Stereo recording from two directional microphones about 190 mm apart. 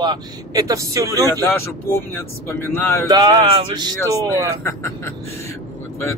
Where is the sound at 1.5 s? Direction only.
15° left (ahead or behind).